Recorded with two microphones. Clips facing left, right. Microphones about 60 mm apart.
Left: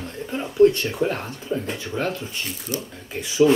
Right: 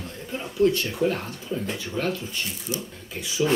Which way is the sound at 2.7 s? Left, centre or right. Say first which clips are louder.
Left 2 dB; left.